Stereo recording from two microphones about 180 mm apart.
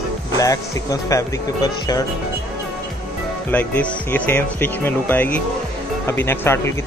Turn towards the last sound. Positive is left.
turn(degrees=15)  # may be behind; listen again after turning